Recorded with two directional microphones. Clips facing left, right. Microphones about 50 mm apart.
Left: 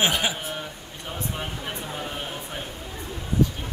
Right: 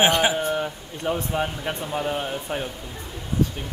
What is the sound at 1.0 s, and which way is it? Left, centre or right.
Speech, right.